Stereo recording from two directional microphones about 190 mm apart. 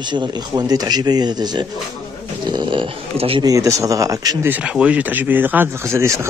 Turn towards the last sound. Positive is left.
turn(degrees=-15)  # may be behind; listen again after turning